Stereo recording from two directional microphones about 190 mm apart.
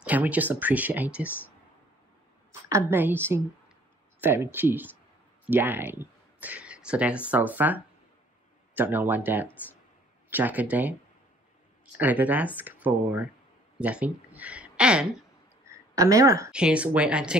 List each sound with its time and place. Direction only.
0.0 s speech: 10° right (ahead or behind)
1.2 s speech: 10° left (ahead or behind)
2.7 s speech: 10° right (ahead or behind)
12.0 s a woman's voice: 10° right (ahead or behind)
15.6 s a sound: 15° right (ahead or behind)
16.5 s speech: 5° right (ahead or behind)